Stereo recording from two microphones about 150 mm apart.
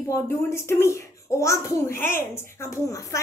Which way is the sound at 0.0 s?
15° left (ahead or behind).